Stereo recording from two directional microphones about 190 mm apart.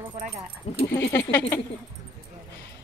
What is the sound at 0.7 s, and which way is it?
Speech, 60° left (ahead or behind).